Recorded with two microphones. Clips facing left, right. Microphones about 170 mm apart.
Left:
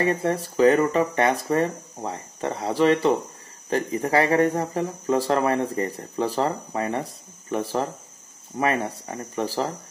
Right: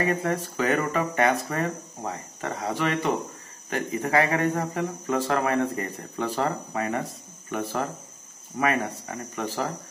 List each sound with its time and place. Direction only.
0.0 s speech: 30° left (ahead or behind)